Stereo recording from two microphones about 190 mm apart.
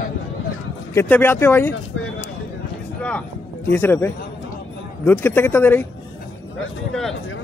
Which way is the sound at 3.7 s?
10° left (ahead or behind).